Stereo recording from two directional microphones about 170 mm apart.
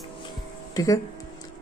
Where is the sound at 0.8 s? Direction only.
20° left (ahead or behind).